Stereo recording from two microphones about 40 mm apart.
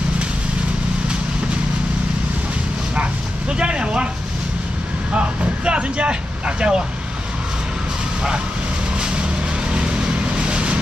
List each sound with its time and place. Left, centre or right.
3.4 s a sound: right
5.7 s vehicle: right
9.7 s vehicle: right